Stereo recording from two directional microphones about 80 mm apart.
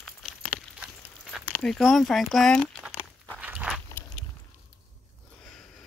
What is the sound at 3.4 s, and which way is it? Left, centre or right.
Walk, centre.